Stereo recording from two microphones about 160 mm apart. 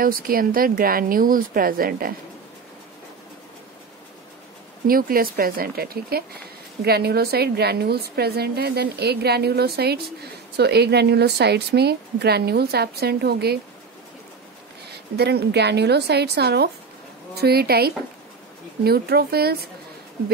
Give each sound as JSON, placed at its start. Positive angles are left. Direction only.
{"t": 0.0, "sound": "a woman's voice", "side_deg": -65}
{"t": 4.8, "sound": "a woman's voice", "side_deg": -65}
{"t": 14.9, "sound": "a woman's voice", "side_deg": -90}